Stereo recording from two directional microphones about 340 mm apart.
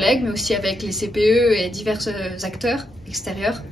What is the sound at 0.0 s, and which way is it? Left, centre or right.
A woman's voice, centre.